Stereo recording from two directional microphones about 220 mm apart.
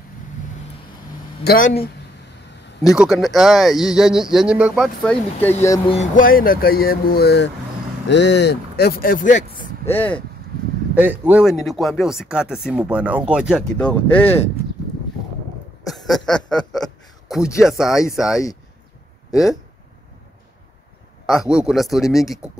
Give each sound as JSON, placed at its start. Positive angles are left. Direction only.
{"t": 1.4, "sound": "speech", "side_deg": 45}
{"t": 2.9, "sound": "speech", "side_deg": 0}
{"t": 5.9, "sound": "speech", "side_deg": 35}
{"t": 9.8, "sound": "speech", "side_deg": 10}
{"t": 11.0, "sound": "speech", "side_deg": -5}
{"t": 15.9, "sound": "a man's voice", "side_deg": 0}
{"t": 21.3, "sound": "speech", "side_deg": 0}